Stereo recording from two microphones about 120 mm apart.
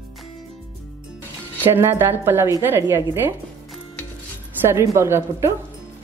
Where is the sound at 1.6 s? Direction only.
20° right (ahead or behind).